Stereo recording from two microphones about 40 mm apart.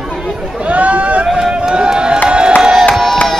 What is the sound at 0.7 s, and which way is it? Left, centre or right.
Speech, right.